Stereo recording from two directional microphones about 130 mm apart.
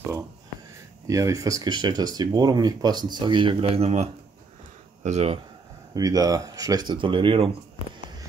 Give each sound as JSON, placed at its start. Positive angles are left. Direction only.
{"t": 1.0, "sound": "speech", "side_deg": -25}
{"t": 5.9, "sound": "speech", "side_deg": -30}